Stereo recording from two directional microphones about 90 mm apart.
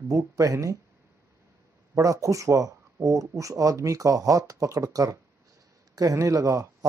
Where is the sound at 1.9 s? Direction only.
40° right (ahead or behind).